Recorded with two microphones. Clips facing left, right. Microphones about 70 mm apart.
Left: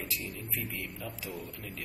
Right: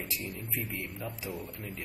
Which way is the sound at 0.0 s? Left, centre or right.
Centre.